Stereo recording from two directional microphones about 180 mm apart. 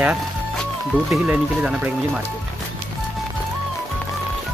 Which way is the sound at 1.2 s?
5° right (ahead or behind).